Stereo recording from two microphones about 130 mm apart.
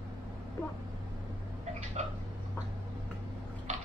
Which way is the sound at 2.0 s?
65° right (ahead or behind).